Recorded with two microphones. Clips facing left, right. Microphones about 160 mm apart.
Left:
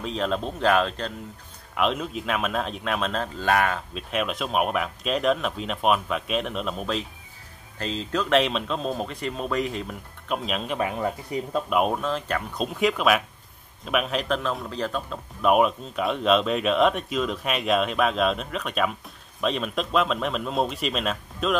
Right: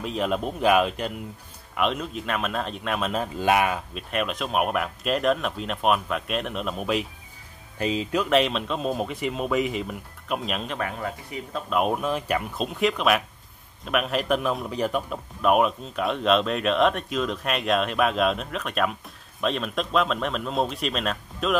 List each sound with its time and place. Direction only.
0.0 s speech: 5° right (ahead or behind)
1.8 s speech: centre (ahead or behind)
4.1 s speech: centre (ahead or behind)
8.3 s speech: centre (ahead or behind)
10.8 s speech: 15° left (ahead or behind)
11.9 s speech: 10° right (ahead or behind)
12.5 s speech: centre (ahead or behind)
15.4 s speech: centre (ahead or behind)